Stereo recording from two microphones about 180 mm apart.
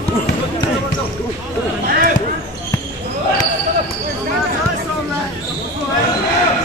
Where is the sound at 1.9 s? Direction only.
50° right (ahead or behind).